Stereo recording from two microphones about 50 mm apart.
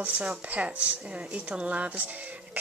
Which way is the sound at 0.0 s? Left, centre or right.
Right.